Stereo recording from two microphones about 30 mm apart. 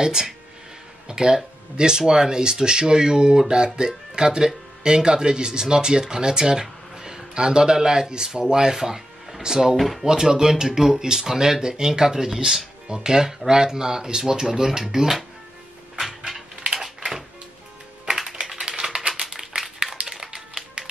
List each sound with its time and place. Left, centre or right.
0.0 s speech: right
8.5 s music: centre
9.4 s speech: right
9.8 s speech: centre
10.0 s speech: right
16.1 s a sound: centre
18.6 s typing: right
19.2 s a sound: centre